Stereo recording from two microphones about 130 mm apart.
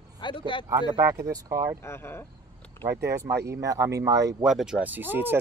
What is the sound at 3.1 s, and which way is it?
Speech, 20° right (ahead or behind).